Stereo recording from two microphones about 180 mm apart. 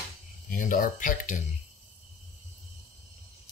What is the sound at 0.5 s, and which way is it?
Speech, 50° left (ahead or behind).